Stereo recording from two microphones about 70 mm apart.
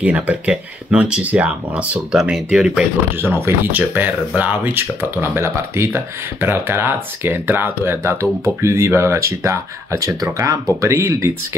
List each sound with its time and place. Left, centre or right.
0.0 s speech: right
2.1 s speech: centre
3.2 s speech: right